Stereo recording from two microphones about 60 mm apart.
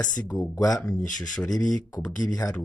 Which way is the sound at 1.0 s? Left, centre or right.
Centre.